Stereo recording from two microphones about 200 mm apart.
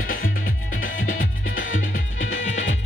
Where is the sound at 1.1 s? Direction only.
80° left.